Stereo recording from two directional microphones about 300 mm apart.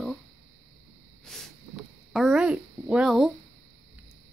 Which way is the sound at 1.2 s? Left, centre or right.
Centre.